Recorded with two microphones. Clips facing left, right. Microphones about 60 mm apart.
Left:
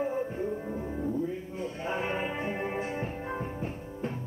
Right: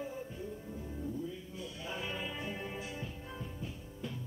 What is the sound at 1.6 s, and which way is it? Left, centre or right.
Music, left.